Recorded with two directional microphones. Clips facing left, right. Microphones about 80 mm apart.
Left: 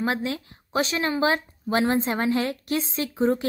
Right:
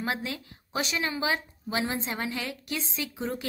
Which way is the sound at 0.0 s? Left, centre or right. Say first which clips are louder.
Left 6 dB; left.